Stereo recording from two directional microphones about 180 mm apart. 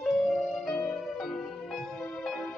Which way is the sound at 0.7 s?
5° left (ahead or behind).